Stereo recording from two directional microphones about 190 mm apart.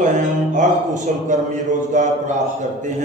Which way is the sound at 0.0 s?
40° right (ahead or behind).